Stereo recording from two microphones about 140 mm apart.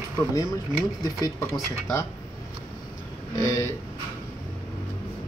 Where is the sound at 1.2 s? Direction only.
25° left (ahead or behind).